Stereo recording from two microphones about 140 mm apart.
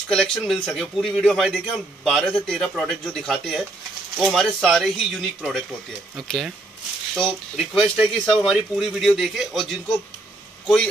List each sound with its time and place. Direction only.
0.1 s speech: 5° left (ahead or behind)